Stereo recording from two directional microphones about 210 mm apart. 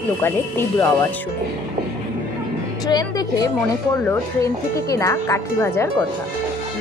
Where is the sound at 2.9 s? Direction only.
20° left (ahead or behind).